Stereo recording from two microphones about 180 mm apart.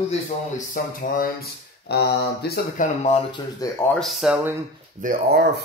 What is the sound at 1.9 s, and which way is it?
Speech, 65° left (ahead or behind).